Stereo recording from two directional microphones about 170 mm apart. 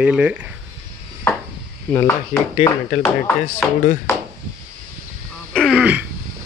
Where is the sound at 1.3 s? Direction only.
10° left (ahead or behind).